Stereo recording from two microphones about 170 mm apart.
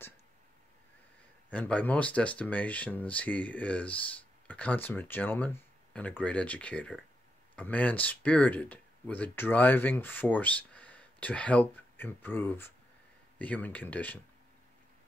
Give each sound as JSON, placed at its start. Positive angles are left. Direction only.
{"t": 1.5, "sound": "speech", "side_deg": 5}